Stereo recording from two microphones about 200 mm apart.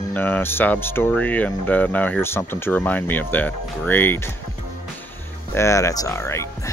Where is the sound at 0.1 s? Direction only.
10° left (ahead or behind).